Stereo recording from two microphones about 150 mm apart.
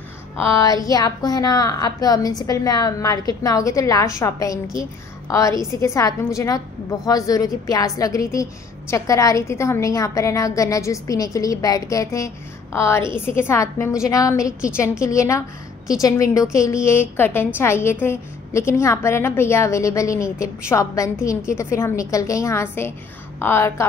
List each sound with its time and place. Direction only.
0.6 s a woman's voice: 25° left (ahead or behind)